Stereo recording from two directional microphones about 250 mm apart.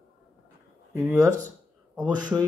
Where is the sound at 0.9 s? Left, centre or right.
Centre.